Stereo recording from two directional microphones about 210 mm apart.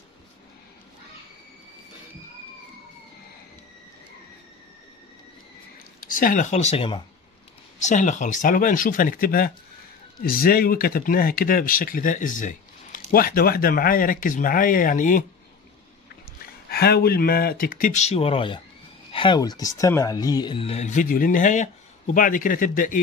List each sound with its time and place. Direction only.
6.0 s speech: 40° left (ahead or behind)
16.7 s speech: 50° left (ahead or behind)